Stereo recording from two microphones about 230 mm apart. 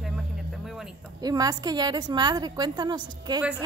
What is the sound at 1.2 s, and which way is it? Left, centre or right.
A woman's voice, centre.